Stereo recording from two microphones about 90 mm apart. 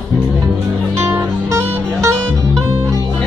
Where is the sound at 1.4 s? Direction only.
30° right (ahead or behind).